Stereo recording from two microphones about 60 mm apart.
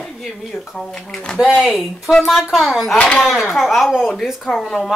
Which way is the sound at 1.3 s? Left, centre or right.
Centre.